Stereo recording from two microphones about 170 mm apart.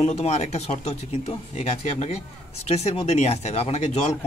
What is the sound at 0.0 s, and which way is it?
Speech, 40° left (ahead or behind).